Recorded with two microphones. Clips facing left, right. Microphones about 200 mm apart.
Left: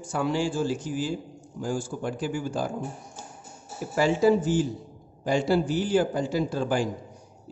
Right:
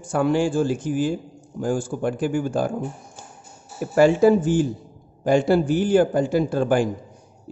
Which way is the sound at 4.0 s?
55° right (ahead or behind).